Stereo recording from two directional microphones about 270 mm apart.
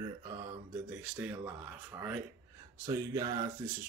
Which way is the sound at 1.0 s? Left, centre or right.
Centre.